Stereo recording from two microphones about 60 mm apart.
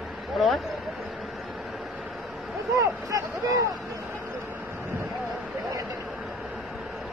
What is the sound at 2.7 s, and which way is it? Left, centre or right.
Speech, right.